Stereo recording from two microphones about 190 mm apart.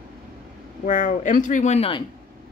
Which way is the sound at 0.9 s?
40° left (ahead or behind).